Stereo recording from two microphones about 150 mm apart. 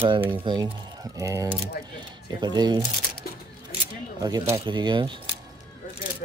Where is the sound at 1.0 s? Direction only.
20° right (ahead or behind).